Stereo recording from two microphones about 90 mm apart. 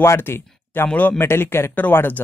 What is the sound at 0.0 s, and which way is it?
Speech, 30° left (ahead or behind).